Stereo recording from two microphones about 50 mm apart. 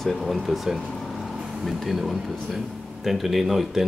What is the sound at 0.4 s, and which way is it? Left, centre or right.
Speech, centre.